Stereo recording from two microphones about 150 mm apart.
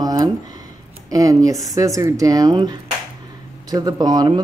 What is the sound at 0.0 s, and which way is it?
Speech, 25° right (ahead or behind).